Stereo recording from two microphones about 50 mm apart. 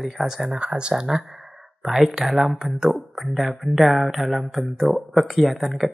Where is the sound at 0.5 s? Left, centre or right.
Right.